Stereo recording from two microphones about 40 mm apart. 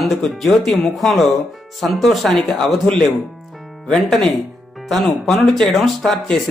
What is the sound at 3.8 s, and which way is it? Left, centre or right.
Speech, centre.